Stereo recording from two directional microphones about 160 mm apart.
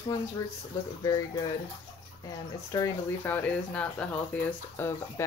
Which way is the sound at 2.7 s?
20° left (ahead or behind).